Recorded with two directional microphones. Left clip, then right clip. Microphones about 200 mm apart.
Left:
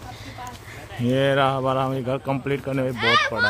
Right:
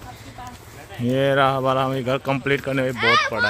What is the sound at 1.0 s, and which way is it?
Speech, 5° right (ahead or behind).